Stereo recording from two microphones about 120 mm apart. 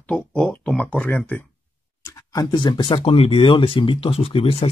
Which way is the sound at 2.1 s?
30° left (ahead or behind).